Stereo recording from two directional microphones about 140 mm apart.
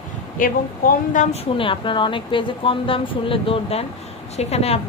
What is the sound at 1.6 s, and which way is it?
A woman's voice, 35° left (ahead or behind).